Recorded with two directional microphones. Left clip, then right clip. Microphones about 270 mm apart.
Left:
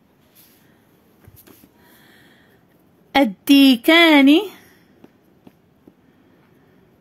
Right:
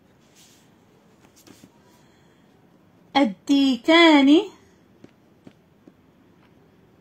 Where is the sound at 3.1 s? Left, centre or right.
Left.